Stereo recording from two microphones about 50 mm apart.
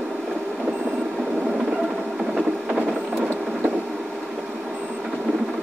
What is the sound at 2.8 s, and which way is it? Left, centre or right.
Printer, right.